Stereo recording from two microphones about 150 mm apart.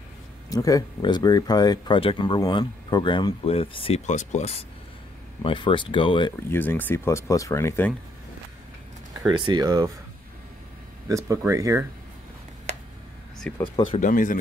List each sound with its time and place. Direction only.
0.5 s speech: 25° left (ahead or behind); by 4.6 s 45° left (ahead or behind)
5.4 s speech: 35° left (ahead or behind)
6.5 s speech: 15° left (ahead or behind)
9.3 s speech: 30° right (ahead or behind)
11.1 s speech: 20° right (ahead or behind)
13.5 s speech: 5° left (ahead or behind)
13.9 s speech: 60° left (ahead or behind)